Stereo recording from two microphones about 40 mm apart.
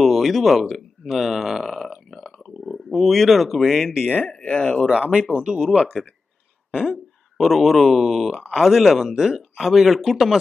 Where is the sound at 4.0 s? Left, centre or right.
Left.